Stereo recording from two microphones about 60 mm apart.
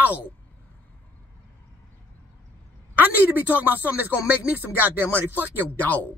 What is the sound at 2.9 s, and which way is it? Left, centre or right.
Speech, right.